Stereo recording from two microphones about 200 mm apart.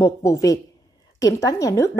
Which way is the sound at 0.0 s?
15° left (ahead or behind).